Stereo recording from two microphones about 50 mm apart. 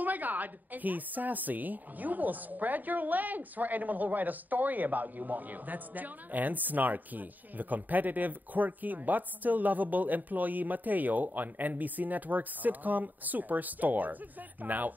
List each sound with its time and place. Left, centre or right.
0.0 s a woman's voice: right